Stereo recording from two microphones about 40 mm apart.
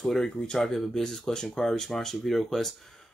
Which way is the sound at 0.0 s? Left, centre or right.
Centre.